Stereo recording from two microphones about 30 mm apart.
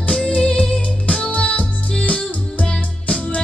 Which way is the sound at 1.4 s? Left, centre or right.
Left.